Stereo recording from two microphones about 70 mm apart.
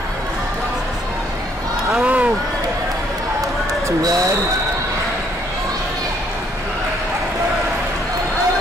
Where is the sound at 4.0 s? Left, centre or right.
Right.